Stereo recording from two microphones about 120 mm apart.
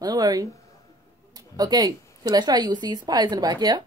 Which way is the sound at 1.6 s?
35° right (ahead or behind).